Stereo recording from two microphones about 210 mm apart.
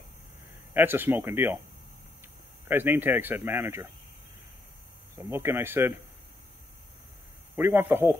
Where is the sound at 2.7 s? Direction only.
10° right (ahead or behind).